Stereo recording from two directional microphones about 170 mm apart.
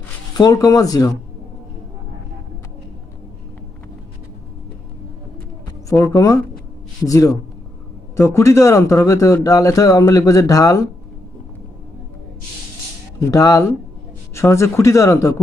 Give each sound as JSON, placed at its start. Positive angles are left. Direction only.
{"t": 0.4, "sound": "speech", "side_deg": 20}
{"t": 6.0, "sound": "speech", "side_deg": 20}
{"t": 13.3, "sound": "speech", "side_deg": 20}